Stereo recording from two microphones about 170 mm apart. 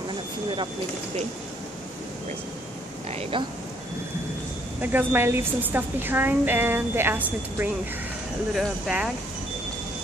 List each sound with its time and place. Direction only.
3.1 s speech: 35° right (ahead or behind)
4.8 s a woman's voice: 10° right (ahead or behind)
8.5 s speech: 5° right (ahead or behind)